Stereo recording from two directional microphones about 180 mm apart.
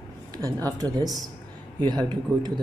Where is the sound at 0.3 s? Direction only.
20° right (ahead or behind).